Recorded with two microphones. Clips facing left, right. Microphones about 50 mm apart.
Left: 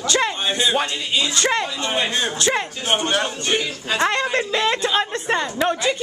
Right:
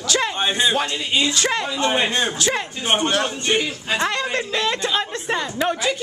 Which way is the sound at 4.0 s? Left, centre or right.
Centre.